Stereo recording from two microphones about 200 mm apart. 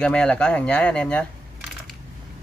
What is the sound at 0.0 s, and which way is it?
Speech, 5° left (ahead or behind).